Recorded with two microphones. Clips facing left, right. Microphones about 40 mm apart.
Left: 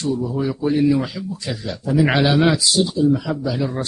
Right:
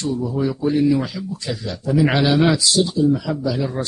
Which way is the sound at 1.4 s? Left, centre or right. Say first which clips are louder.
Even; centre.